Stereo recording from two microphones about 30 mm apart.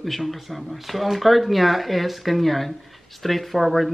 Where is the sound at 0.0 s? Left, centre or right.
Centre.